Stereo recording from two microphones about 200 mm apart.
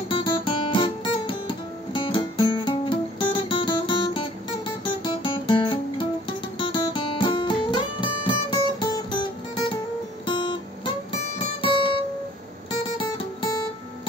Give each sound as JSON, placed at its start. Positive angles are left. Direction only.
{"t": 0.1, "sound": "guitar", "side_deg": 25}
{"t": 10.2, "sound": "guitar", "side_deg": 25}
{"t": 11.1, "sound": "music", "side_deg": 25}
{"t": 12.9, "sound": "guitar", "side_deg": 20}